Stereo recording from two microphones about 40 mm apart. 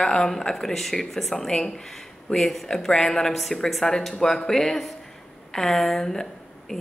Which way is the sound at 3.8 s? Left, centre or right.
Centre.